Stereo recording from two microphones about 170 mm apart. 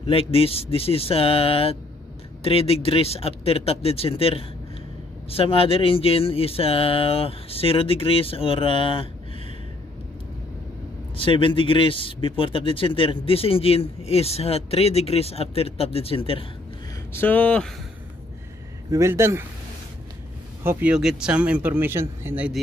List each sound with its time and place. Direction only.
0.0 s speech: 35° left (ahead or behind)
11.1 s speech: 30° left (ahead or behind)
17.1 s speech: 10° left (ahead or behind)
18.9 s speech: 15° right (ahead or behind)
20.6 s speech: 5° right (ahead or behind)